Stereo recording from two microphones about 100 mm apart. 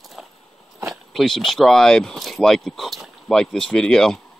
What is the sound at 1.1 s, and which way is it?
Speech, 5° left (ahead or behind).